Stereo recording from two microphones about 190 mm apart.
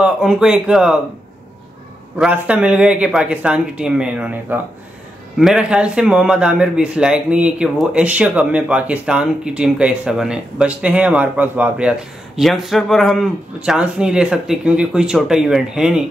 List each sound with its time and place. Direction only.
0.0 s a man's voice: 5° right (ahead or behind)
2.1 s a man's voice: 5° right (ahead or behind)